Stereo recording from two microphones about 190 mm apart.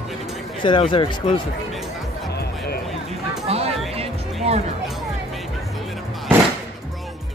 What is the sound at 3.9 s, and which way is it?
Music, 30° right (ahead or behind).